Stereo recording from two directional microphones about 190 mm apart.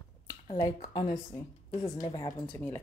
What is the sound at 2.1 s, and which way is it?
Speech, 25° left (ahead or behind).